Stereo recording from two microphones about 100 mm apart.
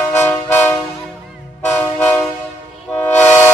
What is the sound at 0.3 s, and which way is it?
Train, 20° left (ahead or behind).